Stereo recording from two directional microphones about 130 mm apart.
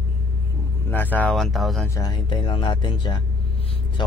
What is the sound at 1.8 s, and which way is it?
Speech, 25° left (ahead or behind).